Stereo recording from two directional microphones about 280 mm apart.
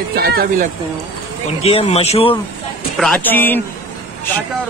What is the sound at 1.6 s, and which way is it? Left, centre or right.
Speech, left.